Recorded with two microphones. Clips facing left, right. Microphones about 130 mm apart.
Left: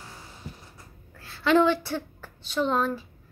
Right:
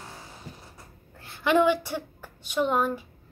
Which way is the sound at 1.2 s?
20° right (ahead or behind).